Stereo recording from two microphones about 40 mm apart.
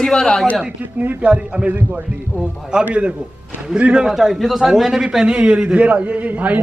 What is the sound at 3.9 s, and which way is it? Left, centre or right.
A man's voice, centre.